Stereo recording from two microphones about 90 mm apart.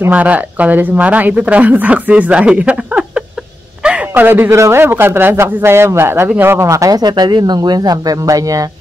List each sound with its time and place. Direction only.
0.1 s a man's voice: 15° right (ahead or behind); by 8.6 s 40° right (ahead or behind)